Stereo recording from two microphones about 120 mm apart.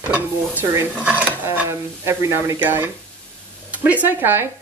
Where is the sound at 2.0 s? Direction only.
20° right (ahead or behind).